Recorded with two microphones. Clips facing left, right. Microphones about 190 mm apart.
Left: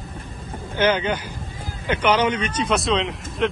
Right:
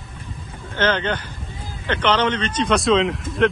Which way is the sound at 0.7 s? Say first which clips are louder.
Left 1 dB; 10° left (ahead or behind).